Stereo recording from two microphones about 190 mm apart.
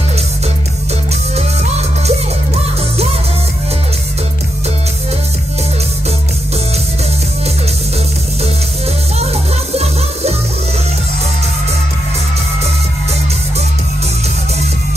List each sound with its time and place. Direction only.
1.3 s music: 35° right (ahead or behind)
9.2 s music: 35° right (ahead or behind)